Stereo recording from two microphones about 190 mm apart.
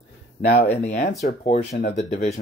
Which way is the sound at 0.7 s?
35° left (ahead or behind).